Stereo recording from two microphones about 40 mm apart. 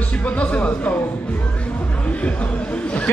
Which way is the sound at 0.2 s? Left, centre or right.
Left.